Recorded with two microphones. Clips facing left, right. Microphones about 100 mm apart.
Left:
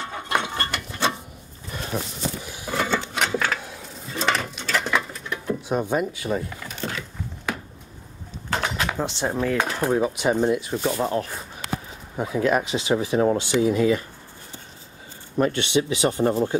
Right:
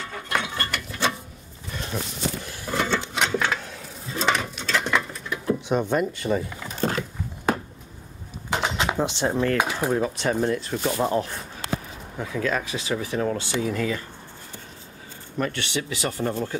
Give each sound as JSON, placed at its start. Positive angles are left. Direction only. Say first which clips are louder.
{"t": 0.0, "sound": "a sound", "louder": "left 2 dB", "side_deg": 25}
{"t": 3.5, "sound": "dishes", "louder": "even", "side_deg": 0}
{"t": 6.7, "sound": "a sound", "louder": "right 9 dB", "side_deg": -40}
{"t": 8.5, "sound": "cutlery", "louder": "even", "side_deg": -10}
{"t": 8.9, "sound": "speech", "louder": "right 2 dB", "side_deg": 0}
{"t": 9.6, "sound": "dishes", "louder": "even", "side_deg": -10}
{"t": 9.8, "sound": "speech", "louder": "left 2 dB", "side_deg": 10}
{"t": 10.8, "sound": "speech", "louder": "even", "side_deg": -5}
{"t": 12.2, "sound": "speech", "louder": "left 5 dB", "side_deg": 20}
{"t": 15.3, "sound": "speech", "louder": "left 6 dB", "side_deg": 20}